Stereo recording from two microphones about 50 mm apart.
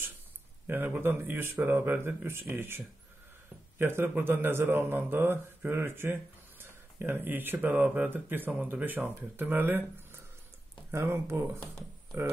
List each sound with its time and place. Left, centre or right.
0.7 s a man's voice: right
10.9 s speech: right